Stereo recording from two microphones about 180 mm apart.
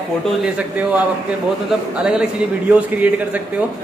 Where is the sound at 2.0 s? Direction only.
5° right (ahead or behind).